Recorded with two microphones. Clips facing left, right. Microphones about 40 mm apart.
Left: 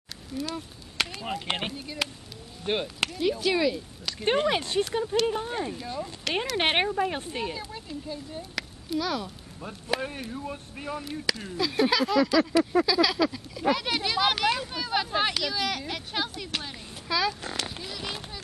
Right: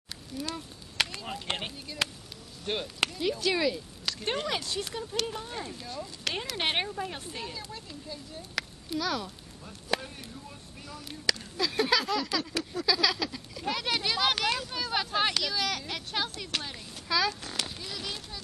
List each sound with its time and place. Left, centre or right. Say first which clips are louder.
0.4 s speech: left 3 dB; centre
1.2 s speech: left 4 dB; centre
3.0 s speech: left 3 dB; centre
4.2 s speech: left 8 dB; left
6.5 s speech: left 7 dB; left
7.6 s speech: left 5 dB; centre
8.5 s speech: left 2 dB; centre
9.9 s speech: left 10 dB; left
11.1 s speech: right 3 dB; centre
18.0 s speech: left 3 dB; centre